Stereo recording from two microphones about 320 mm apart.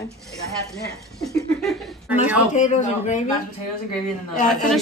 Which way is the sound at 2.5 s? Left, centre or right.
Left.